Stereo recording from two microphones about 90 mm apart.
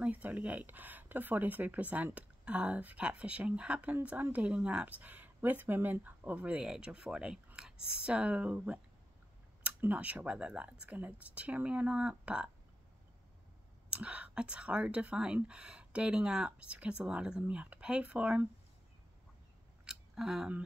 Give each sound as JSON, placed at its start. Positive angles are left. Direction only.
{"t": 0.0, "sound": "speech", "side_deg": -20}
{"t": 13.8, "sound": "speech", "side_deg": -15}
{"t": 19.8, "sound": "scissors", "side_deg": -5}